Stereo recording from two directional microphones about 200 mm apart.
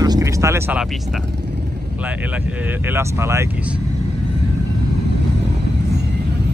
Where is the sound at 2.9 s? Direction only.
15° right (ahead or behind).